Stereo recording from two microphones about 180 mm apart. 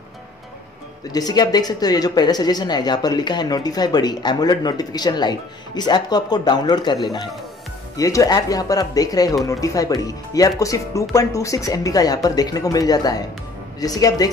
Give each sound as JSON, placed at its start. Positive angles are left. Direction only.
{"t": 1.1, "sound": "a woman's voice", "side_deg": 20}